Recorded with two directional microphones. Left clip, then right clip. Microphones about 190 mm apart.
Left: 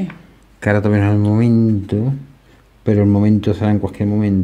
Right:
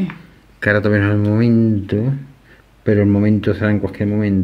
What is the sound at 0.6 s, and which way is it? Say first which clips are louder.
Speech: right 1 dB; 30° left (ahead or behind).